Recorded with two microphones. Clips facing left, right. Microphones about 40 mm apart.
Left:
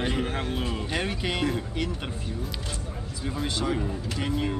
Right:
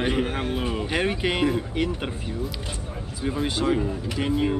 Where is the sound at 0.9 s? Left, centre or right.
Right.